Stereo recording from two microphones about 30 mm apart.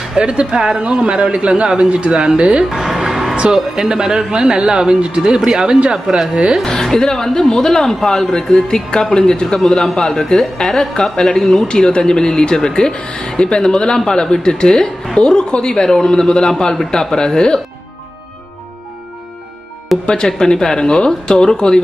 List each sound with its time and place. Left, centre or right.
0.2 s a man's voice: right
0.6 s speech: right
0.8 s a man's voice: right
2.7 s music: centre
3.5 s a man's voice: centre
6.6 s speech: centre
11.6 s speech: left
12.0 s speech: left
12.9 s speech: left
20.1 s speech: left